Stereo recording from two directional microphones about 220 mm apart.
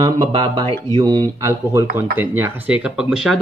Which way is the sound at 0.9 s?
20° right (ahead or behind).